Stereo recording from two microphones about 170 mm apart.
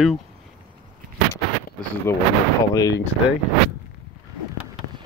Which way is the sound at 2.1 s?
15° left (ahead or behind).